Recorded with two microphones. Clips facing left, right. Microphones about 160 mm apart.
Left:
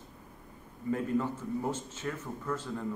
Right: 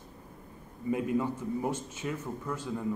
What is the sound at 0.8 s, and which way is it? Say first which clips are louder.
Speech: right 1 dB; 15° right (ahead or behind).